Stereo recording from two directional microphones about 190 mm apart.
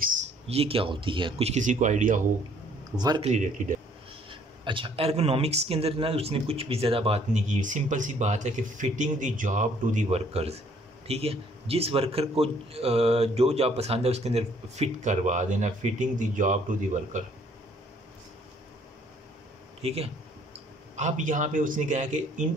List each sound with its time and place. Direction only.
0.5 s speech: 30° right (ahead or behind)
3.0 s speech: 20° right (ahead or behind)
3.3 s speech: 40° right (ahead or behind)
4.3 s speech: 25° right (ahead or behind)
19.8 s speech: 30° right (ahead or behind)